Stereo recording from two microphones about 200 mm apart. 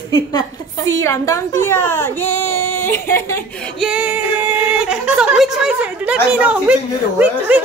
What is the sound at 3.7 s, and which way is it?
Speech, centre (ahead or behind).